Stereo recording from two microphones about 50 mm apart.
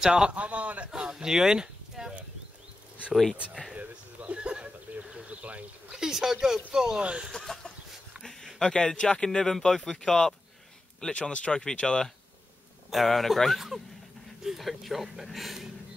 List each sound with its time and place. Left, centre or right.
0.0 s speech: centre
1.1 s speech: centre
3.7 s a sound: right
5.9 s speech: centre
7.0 s speech: right
7.3 s chicken: centre
8.2 s a sound: centre
8.5 s speech: centre
12.9 s speech: centre